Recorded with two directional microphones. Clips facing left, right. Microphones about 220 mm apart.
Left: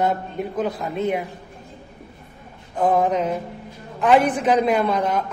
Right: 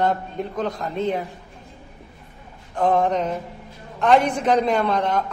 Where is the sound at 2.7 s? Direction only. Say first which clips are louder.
Left 1 dB; 5° left (ahead or behind).